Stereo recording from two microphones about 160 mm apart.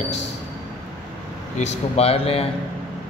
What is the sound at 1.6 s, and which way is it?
Speech, 40° left (ahead or behind).